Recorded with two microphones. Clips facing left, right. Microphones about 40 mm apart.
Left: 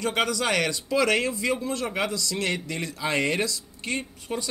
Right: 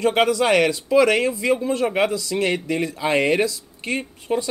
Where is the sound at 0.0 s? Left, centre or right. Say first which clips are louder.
Right 7 dB; right.